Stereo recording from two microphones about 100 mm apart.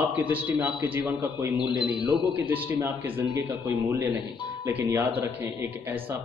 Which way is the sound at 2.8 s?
20° right (ahead or behind).